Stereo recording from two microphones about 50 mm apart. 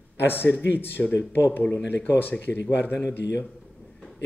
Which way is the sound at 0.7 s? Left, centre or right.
Left.